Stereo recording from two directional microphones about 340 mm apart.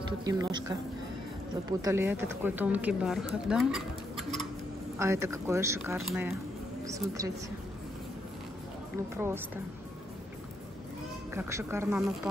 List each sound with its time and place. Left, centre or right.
0.2 s speech: centre
9.1 s speech: centre
11.3 s speech: centre